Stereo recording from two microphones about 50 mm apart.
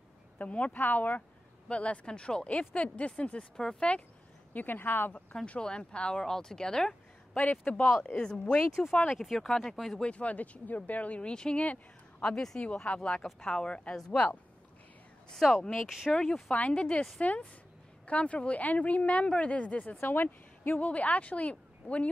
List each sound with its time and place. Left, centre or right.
0.4 s speech: left
4.6 s speech: left
5.6 s speech: centre
7.3 s speech: left
7.8 s speech: centre
9.1 s speech: centre
10.0 s speech: left
11.6 s speech: left
12.3 s speech: centre
15.3 s speech: centre
15.6 s speech: centre
16.5 s speech: left
20.0 s speech: left
20.8 s speech: left